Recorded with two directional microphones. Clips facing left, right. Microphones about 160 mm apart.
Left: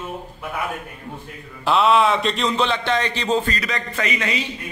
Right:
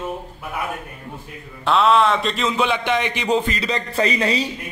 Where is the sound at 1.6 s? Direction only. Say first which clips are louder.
Even; centre (ahead or behind); by 3.6 s 15° right (ahead or behind).